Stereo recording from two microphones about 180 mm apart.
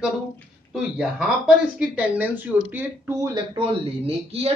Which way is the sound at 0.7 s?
5° right (ahead or behind).